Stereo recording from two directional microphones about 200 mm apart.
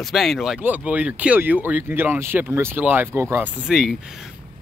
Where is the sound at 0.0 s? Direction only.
Centre (ahead or behind).